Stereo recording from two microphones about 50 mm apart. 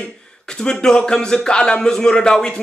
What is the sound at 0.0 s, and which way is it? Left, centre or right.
Speech, centre.